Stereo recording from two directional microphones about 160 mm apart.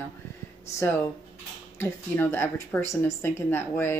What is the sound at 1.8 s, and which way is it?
A woman's voice, 15° left (ahead or behind).